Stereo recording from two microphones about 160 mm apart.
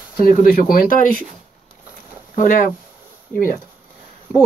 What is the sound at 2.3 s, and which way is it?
Speech, 55° left (ahead or behind).